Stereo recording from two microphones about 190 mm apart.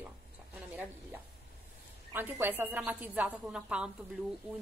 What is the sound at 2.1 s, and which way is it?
A woman's voice, 10° right (ahead or behind).